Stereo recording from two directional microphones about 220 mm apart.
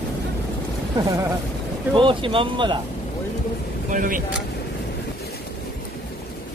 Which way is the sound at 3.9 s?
40° right (ahead or behind).